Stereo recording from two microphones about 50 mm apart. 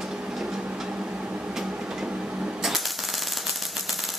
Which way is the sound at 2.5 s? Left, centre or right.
Centre.